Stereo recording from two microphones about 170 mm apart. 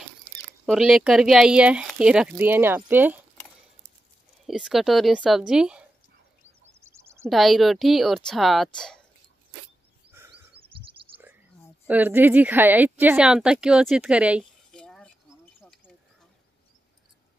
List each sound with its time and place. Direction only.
0.7 s speech: 5° right (ahead or behind)
4.5 s speech: centre (ahead or behind)
6.8 s bird: 15° right (ahead or behind)
7.2 s speech: centre (ahead or behind)
10.1 s a sound: 15° right (ahead or behind)
10.7 s chirp: 30° right (ahead or behind)
11.9 s speech: 10° right (ahead or behind)
14.7 s cutlery: 5° left (ahead or behind)